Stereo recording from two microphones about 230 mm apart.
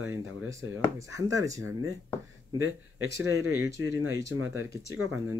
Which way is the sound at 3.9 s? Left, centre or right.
Right.